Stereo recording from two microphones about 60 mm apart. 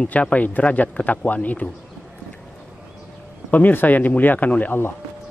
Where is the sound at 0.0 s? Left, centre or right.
Left.